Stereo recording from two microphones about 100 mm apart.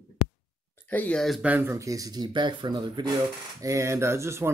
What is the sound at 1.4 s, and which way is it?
Speech, 20° right (ahead or behind).